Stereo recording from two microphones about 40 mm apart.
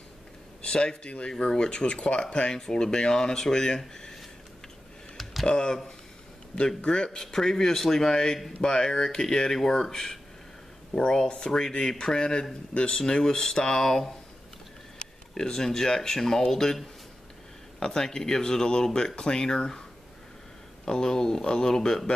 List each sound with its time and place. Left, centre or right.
0.6 s speech: left
5.1 s a sound: centre
5.5 s speech: centre
6.8 s speech: left
17.7 s speech: centre
20.8 s speech: centre